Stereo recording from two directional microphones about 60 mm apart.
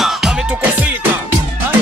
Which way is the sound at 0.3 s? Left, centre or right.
Centre.